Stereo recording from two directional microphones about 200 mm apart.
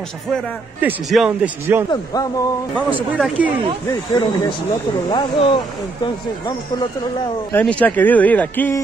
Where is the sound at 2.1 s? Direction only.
20° left (ahead or behind).